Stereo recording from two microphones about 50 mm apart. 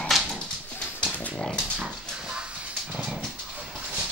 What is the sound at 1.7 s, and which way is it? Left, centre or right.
Dog, centre.